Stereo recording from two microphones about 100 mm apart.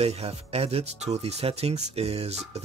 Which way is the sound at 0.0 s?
90° right.